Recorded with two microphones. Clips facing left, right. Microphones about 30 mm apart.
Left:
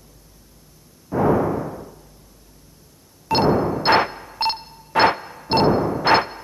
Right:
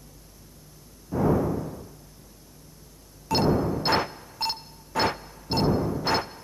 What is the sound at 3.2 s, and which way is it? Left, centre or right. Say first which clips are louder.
Music: left 5 dB; left.